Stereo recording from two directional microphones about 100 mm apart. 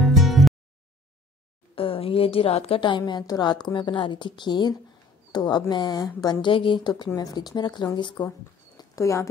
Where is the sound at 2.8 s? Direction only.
50° left (ahead or behind).